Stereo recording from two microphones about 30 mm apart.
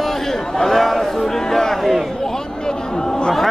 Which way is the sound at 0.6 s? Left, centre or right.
Centre.